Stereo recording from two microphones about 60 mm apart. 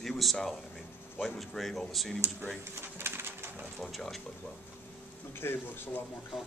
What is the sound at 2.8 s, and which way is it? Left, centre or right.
Bird, right.